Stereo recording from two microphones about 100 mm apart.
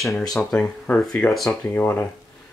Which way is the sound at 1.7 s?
25° left (ahead or behind).